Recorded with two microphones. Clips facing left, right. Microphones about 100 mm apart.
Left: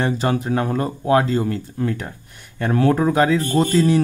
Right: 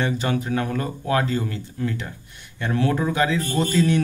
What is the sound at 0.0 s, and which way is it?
Speech, 35° left (ahead or behind).